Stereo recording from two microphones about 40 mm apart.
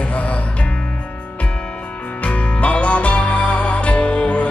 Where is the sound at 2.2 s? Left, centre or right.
Left.